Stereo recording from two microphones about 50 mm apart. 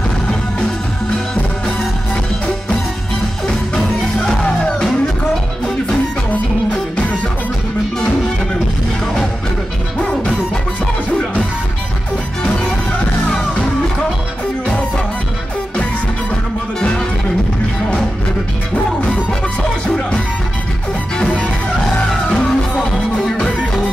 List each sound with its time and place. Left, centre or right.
0.3 s music: centre
3.4 s music: centre
9.9 s music: left
21.2 s music: left